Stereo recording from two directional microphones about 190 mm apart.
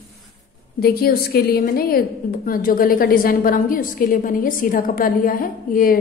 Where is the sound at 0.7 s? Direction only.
50° left (ahead or behind).